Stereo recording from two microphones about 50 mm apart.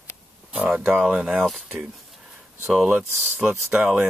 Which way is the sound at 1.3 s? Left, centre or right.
Centre.